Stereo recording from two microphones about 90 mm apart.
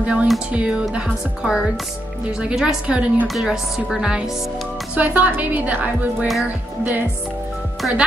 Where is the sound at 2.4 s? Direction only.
10° right (ahead or behind).